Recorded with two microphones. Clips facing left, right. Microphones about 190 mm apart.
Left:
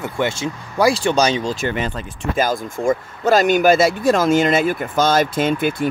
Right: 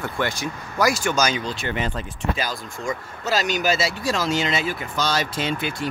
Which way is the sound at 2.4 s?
50° left (ahead or behind).